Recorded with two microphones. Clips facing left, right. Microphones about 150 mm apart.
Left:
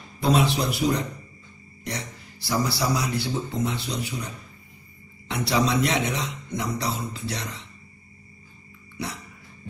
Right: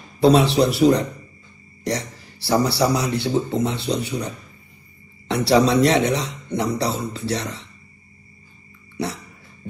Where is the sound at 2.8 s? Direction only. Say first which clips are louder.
Right 6 dB; 30° right (ahead or behind).